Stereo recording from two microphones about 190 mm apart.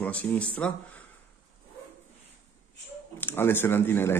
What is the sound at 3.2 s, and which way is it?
A man's voice, 10° left (ahead or behind).